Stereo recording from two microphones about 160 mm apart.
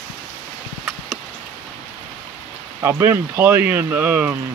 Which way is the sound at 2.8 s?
15° right (ahead or behind).